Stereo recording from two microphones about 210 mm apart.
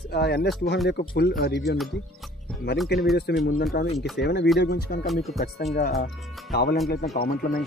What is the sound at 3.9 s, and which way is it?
Speech, centre (ahead or behind).